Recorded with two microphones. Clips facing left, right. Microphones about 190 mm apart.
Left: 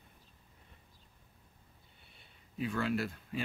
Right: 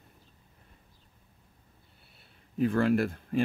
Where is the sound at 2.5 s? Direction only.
50° right (ahead or behind).